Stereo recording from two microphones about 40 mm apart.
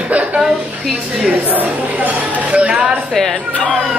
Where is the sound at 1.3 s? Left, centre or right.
Right.